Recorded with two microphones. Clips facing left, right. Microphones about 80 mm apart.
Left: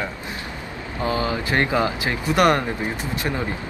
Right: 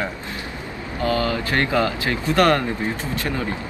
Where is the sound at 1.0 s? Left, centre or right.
Left.